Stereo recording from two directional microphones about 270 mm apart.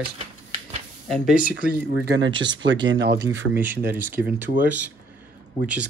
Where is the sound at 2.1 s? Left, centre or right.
Right.